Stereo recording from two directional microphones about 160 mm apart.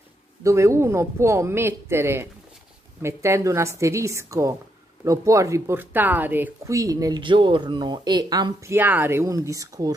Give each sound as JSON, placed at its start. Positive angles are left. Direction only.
{"t": 0.4, "sound": "speech", "side_deg": -20}